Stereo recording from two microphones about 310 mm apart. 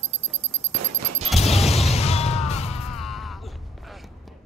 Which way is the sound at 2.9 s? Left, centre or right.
Centre.